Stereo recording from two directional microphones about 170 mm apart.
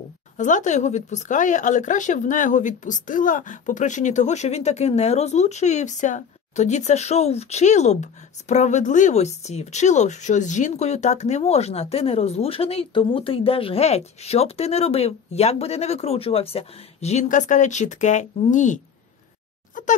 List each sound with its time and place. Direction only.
0.4 s speech: 45° left (ahead or behind)